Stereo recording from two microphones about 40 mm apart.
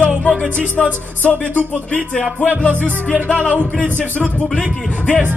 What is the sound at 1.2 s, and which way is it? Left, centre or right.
Music, left.